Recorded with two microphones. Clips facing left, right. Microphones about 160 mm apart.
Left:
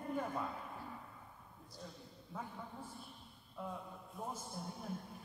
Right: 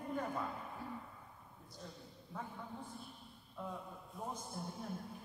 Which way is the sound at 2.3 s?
Centre (ahead or behind).